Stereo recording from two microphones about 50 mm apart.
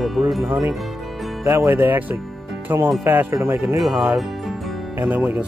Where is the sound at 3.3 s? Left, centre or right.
Right.